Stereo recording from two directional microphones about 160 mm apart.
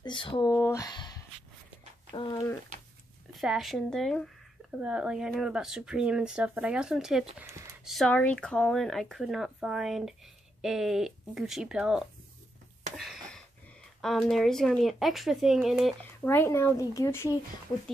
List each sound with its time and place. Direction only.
0.0 s speech: 30° left (ahead or behind)
0.5 s speech: 15° left (ahead or behind)
3.3 s speech: centre (ahead or behind)
7.3 s a sound: 15° right (ahead or behind)
7.8 s a sound: centre (ahead or behind)
8.1 s speech: 10° left (ahead or behind)
12.9 s a sound: centre (ahead or behind)
14.0 s speech: centre (ahead or behind)
16.0 s speech: 15° left (ahead or behind)